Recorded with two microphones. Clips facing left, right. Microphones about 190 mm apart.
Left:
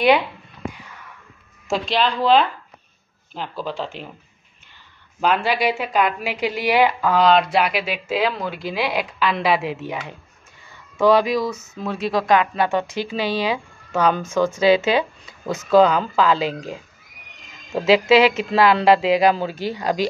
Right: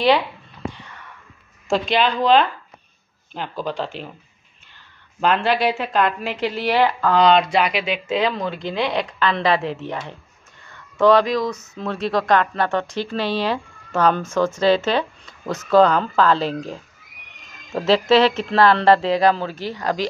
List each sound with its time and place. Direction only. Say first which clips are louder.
1.7 s speech: right 2 dB; centre (ahead or behind)
3.6 s speech: right 2 dB; 5° left (ahead or behind)
5.2 s a woman's voice: right 1 dB; 5° left (ahead or behind)